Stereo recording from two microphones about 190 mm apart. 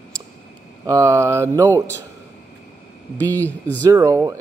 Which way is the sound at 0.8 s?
15° right (ahead or behind).